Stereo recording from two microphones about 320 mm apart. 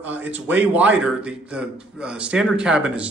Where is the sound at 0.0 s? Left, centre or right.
Centre.